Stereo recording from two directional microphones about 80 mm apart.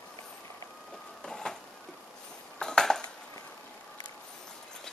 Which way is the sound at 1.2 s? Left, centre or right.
Centre.